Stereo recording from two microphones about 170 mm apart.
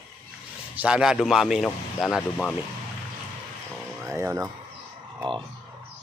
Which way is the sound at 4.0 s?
15° right (ahead or behind).